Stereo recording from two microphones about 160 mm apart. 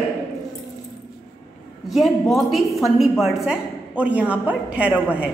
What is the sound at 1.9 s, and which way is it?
A woman's voice, centre (ahead or behind).